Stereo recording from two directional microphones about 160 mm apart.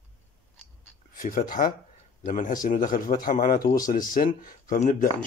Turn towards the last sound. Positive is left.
turn(degrees=55)  # may be behind; listen again after turning